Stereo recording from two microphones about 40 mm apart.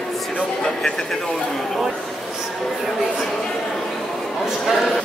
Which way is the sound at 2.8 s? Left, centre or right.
Centre.